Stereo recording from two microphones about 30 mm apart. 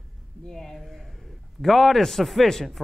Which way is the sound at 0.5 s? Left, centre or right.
Centre.